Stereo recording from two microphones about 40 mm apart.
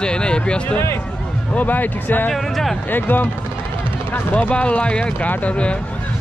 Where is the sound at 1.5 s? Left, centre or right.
Left.